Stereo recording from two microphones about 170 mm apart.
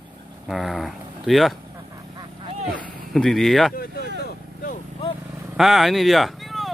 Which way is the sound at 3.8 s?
65° left (ahead or behind).